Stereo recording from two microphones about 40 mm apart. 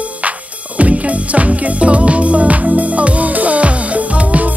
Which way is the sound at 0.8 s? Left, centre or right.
Right.